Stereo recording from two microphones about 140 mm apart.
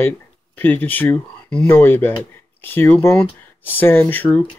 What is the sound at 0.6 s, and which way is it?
Speech, 15° left (ahead or behind).